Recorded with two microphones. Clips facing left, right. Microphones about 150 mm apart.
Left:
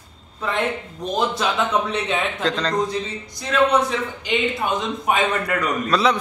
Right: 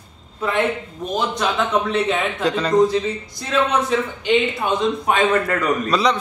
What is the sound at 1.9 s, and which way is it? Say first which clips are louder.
Speech: right 3 dB; 5° right (ahead or behind).